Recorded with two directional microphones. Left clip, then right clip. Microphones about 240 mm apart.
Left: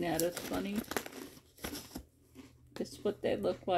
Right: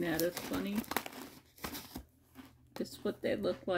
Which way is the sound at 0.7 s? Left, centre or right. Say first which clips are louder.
Right 1 dB; right.